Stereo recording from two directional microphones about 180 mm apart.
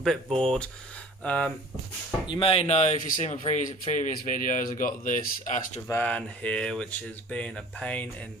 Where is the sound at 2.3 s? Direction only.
30° left (ahead or behind); by 5.6 s 45° left (ahead or behind).